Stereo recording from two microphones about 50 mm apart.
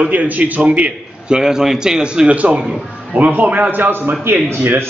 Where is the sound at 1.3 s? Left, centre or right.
Centre.